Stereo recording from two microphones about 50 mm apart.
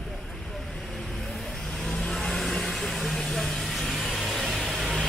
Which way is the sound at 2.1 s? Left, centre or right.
Centre.